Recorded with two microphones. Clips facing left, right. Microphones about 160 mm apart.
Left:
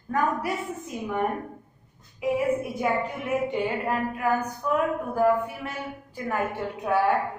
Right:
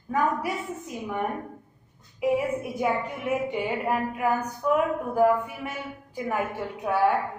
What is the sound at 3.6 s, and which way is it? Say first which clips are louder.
A woman's voice: even; 15° right (ahead or behind).